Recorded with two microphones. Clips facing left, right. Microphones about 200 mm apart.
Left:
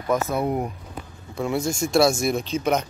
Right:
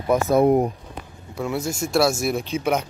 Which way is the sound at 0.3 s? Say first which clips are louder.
Right 8 dB; 45° right (ahead or behind).